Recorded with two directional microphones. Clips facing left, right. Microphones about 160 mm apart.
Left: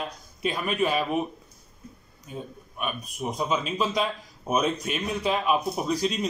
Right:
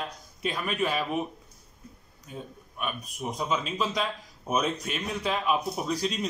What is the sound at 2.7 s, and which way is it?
A man's voice, 15° left (ahead or behind).